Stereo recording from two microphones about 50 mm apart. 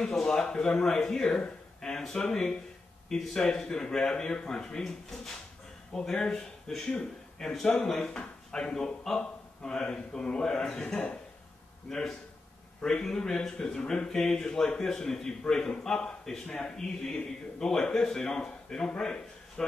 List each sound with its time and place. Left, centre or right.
0.1 s a man's voice: centre
10.4 s speech: centre
10.8 s a man's voice: centre
11.9 s speech: centre